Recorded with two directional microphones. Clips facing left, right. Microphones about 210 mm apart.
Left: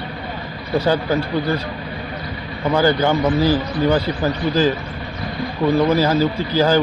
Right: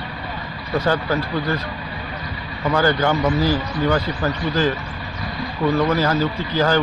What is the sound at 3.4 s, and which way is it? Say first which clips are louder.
Speech: left 3 dB; 30° left (ahead or behind).